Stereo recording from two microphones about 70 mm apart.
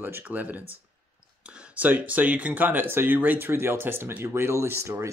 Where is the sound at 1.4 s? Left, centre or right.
Centre.